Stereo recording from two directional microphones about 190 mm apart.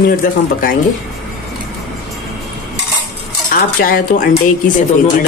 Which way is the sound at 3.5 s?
50° left (ahead or behind).